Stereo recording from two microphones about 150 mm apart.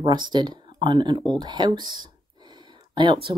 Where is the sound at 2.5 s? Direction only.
30° right (ahead or behind).